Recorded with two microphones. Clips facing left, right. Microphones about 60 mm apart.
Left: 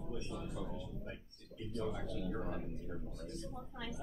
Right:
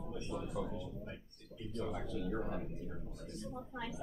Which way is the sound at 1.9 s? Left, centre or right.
Right.